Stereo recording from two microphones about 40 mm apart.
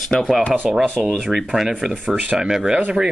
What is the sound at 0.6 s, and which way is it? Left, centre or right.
Speech, centre.